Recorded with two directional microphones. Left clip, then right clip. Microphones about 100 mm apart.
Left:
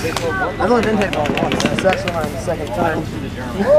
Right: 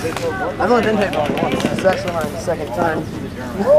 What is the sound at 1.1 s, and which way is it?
Speech, 15° left (ahead or behind).